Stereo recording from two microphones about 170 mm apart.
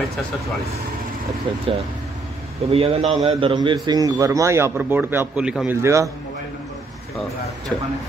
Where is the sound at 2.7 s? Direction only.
35° right (ahead or behind); by 5.8 s 5° right (ahead or behind).